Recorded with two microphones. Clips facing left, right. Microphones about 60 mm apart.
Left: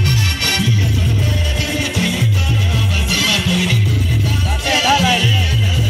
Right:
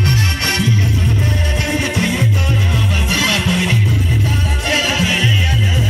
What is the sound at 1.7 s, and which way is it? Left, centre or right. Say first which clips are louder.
Music: right 1 dB; right.